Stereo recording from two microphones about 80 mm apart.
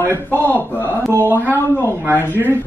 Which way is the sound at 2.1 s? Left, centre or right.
Left.